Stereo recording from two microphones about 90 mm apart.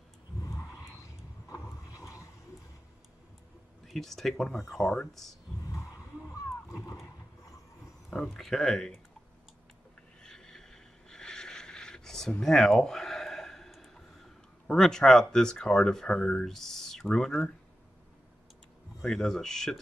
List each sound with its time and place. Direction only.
1.5 s vehicle: 40° left (ahead or behind)
3.8 s speech: centre (ahead or behind)
8.3 s speech: 5° left (ahead or behind)
10.2 s a sound: 5° left (ahead or behind)
18.9 s speech: 5° left (ahead or behind)